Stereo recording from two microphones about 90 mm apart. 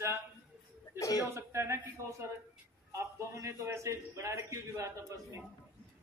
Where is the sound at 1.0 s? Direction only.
40° left (ahead or behind).